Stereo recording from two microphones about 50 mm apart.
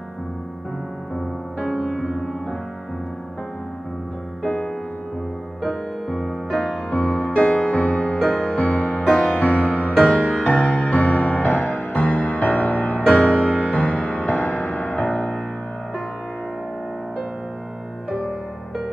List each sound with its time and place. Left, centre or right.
1.8 s music: centre
4.4 s music: centre
6.9 s music: left
8.2 s music: centre
8.5 s music: left